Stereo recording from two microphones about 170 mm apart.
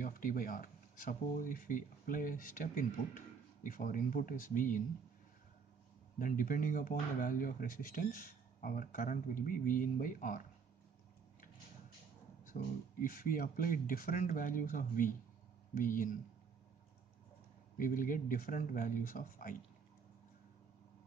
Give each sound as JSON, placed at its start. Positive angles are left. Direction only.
{"t": 0.0, "sound": "speech", "side_deg": 55}
{"t": 6.1, "sound": "speech", "side_deg": 50}
{"t": 12.5, "sound": "speech", "side_deg": 50}
{"t": 17.7, "sound": "speech", "side_deg": 55}